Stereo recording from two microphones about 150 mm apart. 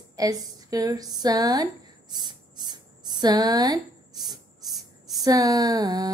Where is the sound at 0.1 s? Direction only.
25° right (ahead or behind).